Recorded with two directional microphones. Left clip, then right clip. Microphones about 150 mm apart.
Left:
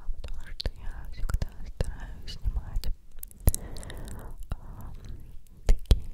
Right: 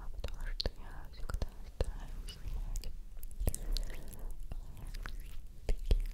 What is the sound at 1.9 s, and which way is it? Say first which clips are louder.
Whispering: left 7 dB; 50° left (ahead or behind).